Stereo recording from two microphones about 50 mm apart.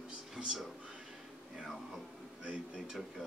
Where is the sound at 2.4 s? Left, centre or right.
Right.